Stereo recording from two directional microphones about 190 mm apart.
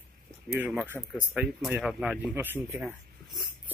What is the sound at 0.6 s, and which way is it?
Speech, 5° right (ahead or behind).